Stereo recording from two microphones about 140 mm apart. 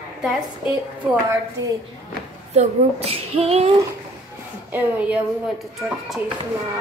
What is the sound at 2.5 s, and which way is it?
Speech, 50° right (ahead or behind).